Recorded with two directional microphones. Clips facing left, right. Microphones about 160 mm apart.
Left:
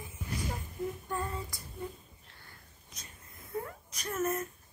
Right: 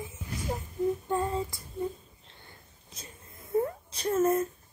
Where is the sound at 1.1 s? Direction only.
25° right (ahead or behind).